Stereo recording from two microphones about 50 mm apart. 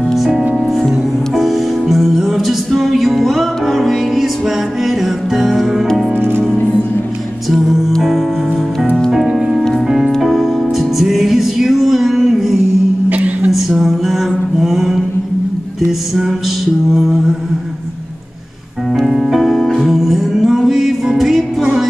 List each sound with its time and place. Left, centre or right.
0.1 s music: centre
6.1 s music: right
7.4 s music: centre
9.1 s music: centre
13.1 s a sound: right
13.5 s a sound: centre
16.9 s mantra: centre
18.9 s music: centre